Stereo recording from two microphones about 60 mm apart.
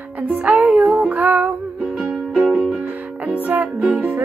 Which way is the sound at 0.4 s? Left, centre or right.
Right.